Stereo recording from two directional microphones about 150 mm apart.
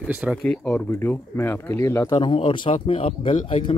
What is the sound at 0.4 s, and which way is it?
Speech, 10° left (ahead or behind).